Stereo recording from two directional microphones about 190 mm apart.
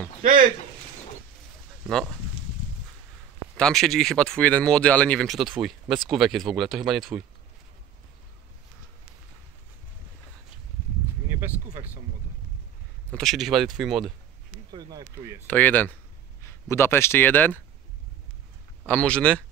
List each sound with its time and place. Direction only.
0.2 s speech: 45° right (ahead or behind)
1.9 s speech: 5° left (ahead or behind)
3.5 s speech: 5° left (ahead or behind)
11.3 s a sound: 15° right (ahead or behind)
13.1 s speech: centre (ahead or behind)
14.7 s speech: 20° right (ahead or behind)
15.4 s speech: 10° left (ahead or behind)
18.9 s speech: 5° left (ahead or behind)